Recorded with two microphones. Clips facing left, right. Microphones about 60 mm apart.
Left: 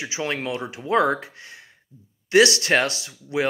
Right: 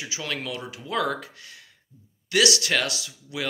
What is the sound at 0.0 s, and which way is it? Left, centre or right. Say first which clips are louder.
Speech: left 5 dB; left.